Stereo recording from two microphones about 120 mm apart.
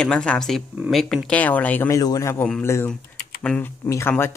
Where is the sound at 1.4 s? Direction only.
15° left (ahead or behind).